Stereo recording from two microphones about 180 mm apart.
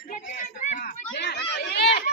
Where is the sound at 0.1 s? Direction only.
45° left (ahead or behind).